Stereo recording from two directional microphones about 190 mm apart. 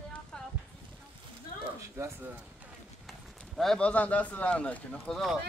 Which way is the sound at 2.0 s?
15° right (ahead or behind).